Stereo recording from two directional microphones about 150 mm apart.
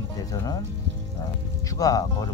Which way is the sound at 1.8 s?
25° left (ahead or behind).